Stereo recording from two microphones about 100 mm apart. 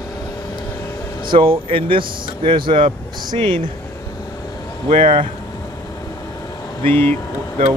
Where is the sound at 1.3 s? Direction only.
60° right (ahead or behind).